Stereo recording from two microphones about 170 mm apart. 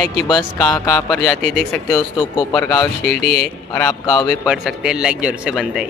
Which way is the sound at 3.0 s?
65° left (ahead or behind).